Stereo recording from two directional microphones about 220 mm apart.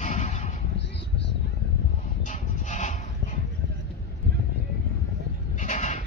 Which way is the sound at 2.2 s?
35° left (ahead or behind).